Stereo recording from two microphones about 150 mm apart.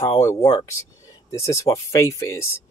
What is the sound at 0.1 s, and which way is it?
Speech, 20° left (ahead or behind).